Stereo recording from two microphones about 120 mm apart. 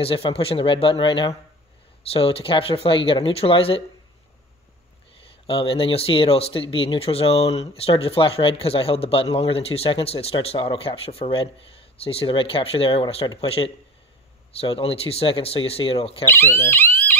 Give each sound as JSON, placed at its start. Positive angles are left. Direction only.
{"t": 0.0, "sound": "speech", "side_deg": 50}
{"t": 5.5, "sound": "speech", "side_deg": 50}
{"t": 16.3, "sound": "speech", "side_deg": 20}